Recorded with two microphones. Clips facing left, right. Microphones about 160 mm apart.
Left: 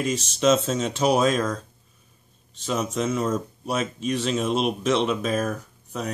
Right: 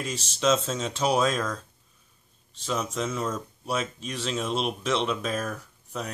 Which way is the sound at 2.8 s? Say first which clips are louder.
Left 6 dB; 20° left (ahead or behind).